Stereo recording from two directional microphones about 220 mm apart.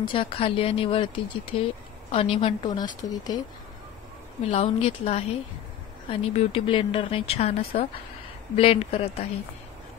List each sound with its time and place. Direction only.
0.1 s speech: 25° left (ahead or behind)
4.5 s speech: 25° left (ahead or behind)